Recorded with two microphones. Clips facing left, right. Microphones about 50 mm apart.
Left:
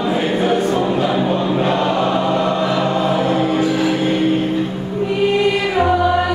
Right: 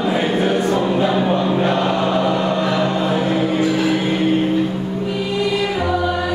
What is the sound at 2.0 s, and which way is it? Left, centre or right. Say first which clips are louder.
Choir: left 1 dB; centre.